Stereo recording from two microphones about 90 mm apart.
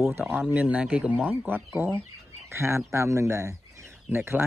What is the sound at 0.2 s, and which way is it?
Speech, 20° right (ahead or behind).